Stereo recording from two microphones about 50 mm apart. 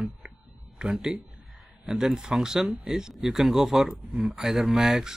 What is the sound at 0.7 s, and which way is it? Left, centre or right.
Speech, centre.